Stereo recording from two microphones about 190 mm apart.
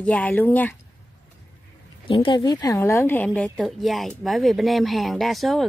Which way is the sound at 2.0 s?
25° left (ahead or behind).